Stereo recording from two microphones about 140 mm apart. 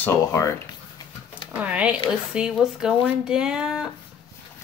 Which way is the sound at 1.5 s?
10° right (ahead or behind).